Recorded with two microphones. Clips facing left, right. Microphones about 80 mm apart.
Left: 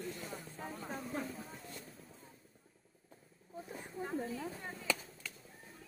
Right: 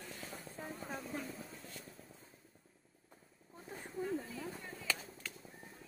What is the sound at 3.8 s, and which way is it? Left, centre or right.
Speech, left.